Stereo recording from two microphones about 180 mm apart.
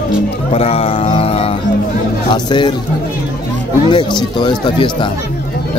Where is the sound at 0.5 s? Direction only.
35° left (ahead or behind).